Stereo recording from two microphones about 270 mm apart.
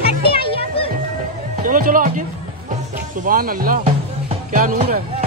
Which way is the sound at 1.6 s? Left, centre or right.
Right.